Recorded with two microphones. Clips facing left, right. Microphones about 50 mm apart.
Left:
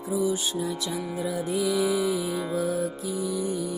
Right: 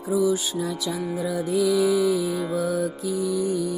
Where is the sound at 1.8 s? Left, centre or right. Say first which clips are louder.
Right 4 dB; centre.